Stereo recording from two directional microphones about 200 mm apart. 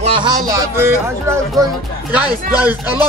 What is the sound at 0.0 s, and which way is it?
A man's voice, 20° right (ahead or behind).